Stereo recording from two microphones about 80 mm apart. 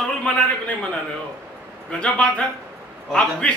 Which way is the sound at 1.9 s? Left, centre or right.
Centre.